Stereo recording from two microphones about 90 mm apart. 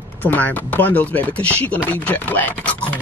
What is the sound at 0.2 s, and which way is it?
Speech, 15° left (ahead or behind).